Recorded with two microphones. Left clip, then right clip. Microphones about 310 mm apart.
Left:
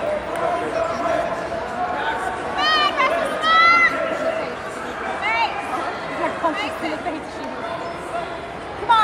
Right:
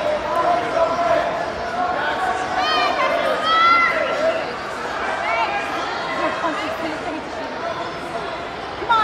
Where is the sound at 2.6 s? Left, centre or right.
Left.